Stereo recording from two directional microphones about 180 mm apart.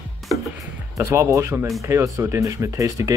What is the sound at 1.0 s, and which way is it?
Speech, 15° right (ahead or behind).